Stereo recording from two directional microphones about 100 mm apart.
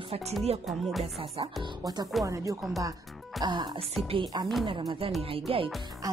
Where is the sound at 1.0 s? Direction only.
90° right.